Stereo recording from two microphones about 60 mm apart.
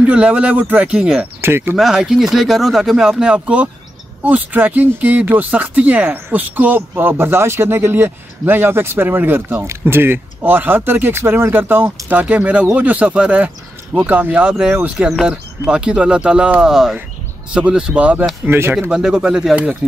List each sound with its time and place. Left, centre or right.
0.0 s speech: right
1.4 s speech: right
1.8 s speech: centre
16.6 s speech: centre
17.6 s speech: centre
18.4 s speech: right
18.8 s speech: centre